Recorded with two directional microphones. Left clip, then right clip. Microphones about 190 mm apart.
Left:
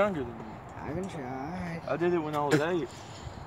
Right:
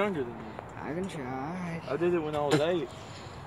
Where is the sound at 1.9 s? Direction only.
50° left (ahead or behind).